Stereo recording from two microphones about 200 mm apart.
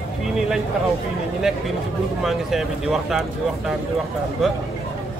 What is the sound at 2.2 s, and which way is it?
Speech, centre (ahead or behind).